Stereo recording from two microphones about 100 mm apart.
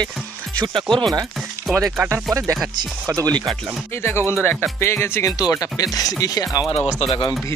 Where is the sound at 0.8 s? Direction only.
Centre (ahead or behind).